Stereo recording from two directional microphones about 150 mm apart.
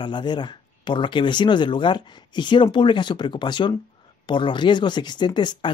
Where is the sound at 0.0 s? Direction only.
30° left (ahead or behind).